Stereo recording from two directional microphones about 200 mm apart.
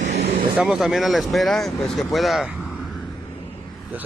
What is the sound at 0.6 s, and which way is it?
Speech, centre (ahead or behind).